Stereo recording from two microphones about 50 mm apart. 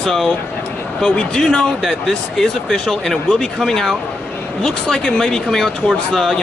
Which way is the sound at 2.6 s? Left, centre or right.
Centre.